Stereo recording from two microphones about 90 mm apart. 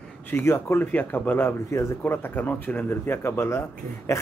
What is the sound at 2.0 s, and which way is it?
A man's voice, 20° left (ahead or behind).